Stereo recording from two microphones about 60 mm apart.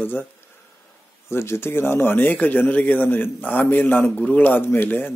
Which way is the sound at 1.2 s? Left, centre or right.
Left.